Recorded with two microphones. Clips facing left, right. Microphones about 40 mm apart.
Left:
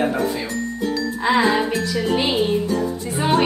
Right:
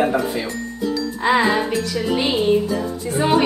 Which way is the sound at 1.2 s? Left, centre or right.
Centre.